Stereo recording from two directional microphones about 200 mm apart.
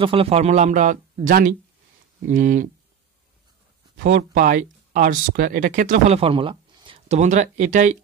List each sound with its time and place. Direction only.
0.0 s speech: 30° right (ahead or behind)
4.0 s speech: 55° right (ahead or behind)
4.4 s speech: 40° right (ahead or behind)